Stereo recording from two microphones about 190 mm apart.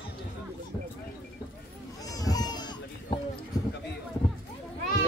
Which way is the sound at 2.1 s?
20° left (ahead or behind).